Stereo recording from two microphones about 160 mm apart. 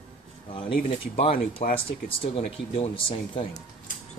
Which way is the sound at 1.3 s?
60° left (ahead or behind).